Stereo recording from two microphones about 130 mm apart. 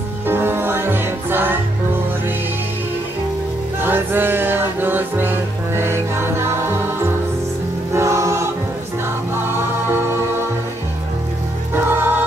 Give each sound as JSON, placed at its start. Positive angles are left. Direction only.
{"t": 0.3, "sound": "music", "side_deg": -15}
{"t": 3.8, "sound": "music", "side_deg": -15}
{"t": 7.9, "sound": "choir", "side_deg": -20}
{"t": 9.3, "sound": "music", "side_deg": -20}
{"t": 11.7, "sound": "music", "side_deg": -15}